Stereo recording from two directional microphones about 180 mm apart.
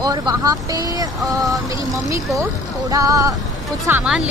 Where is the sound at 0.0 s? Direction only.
20° right (ahead or behind).